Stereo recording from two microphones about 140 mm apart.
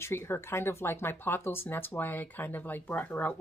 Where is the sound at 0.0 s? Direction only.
20° left (ahead or behind).